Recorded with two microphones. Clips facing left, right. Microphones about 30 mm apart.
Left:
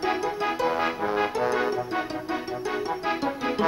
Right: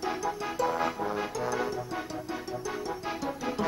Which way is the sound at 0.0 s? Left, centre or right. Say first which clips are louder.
Left 6 dB; left.